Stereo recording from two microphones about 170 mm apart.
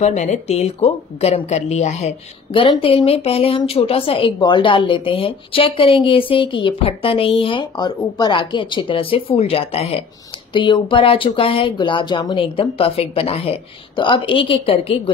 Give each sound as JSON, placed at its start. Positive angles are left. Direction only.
{"t": 0.0, "sound": "a woman's voice", "side_deg": 45}